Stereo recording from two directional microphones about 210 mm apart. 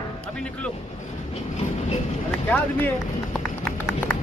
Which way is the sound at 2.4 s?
10° left (ahead or behind).